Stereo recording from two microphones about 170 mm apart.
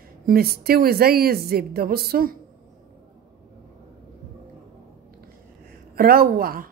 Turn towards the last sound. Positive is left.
turn(degrees=-60)  # may be behind; listen again after turning